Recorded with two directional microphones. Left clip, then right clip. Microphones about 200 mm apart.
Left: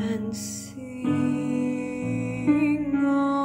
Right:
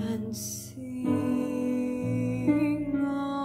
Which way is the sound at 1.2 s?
5° left (ahead or behind).